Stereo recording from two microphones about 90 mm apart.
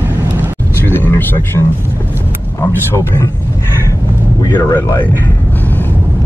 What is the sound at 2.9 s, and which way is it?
Vehicle, 35° left (ahead or behind).